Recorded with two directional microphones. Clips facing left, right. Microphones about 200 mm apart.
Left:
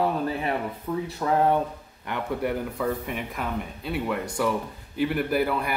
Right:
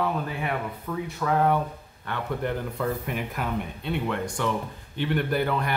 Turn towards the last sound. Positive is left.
turn(degrees=5)  # may be behind; listen again after turning